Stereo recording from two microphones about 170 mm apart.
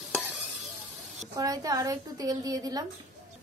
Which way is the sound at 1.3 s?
20° right (ahead or behind).